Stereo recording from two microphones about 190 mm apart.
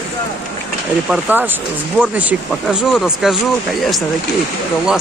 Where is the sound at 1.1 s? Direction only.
10° right (ahead or behind).